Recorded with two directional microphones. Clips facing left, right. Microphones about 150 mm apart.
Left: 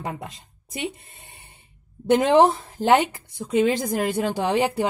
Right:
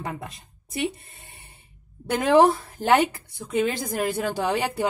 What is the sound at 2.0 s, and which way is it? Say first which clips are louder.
A woman's voice: left 1 dB; 20° left (ahead or behind).